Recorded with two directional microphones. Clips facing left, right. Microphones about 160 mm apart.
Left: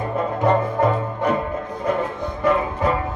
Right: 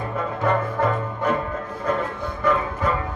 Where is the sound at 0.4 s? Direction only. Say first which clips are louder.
Left 3 dB; 20° left (ahead or behind).